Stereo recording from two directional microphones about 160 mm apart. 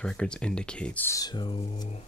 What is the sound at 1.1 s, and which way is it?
Speech, 25° left (ahead or behind).